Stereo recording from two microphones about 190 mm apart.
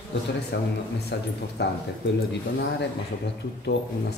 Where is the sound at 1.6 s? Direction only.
60° left (ahead or behind).